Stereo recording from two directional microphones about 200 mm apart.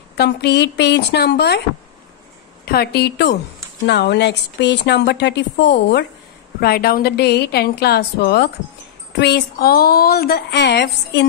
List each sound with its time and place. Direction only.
0.2 s a woman's voice: 55° left (ahead or behind)
2.6 s a woman's voice: 50° left (ahead or behind)